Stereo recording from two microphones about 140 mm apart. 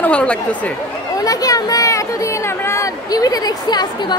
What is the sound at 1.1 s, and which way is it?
Speech, 25° left (ahead or behind).